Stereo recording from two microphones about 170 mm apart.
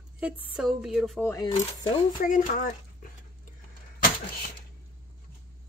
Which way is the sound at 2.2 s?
50° left (ahead or behind).